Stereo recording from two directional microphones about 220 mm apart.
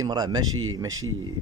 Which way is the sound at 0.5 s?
70° right (ahead or behind).